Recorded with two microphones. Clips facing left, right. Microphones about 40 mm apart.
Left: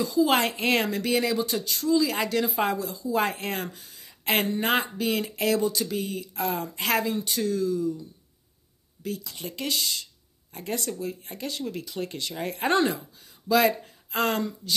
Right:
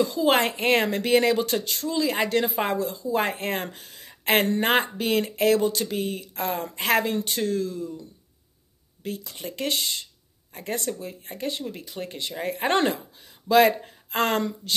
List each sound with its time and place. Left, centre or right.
0.0 s a woman's voice: right
12.6 s speech: right